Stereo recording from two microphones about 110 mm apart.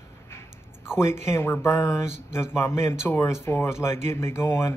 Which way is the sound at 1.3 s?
25° left (ahead or behind).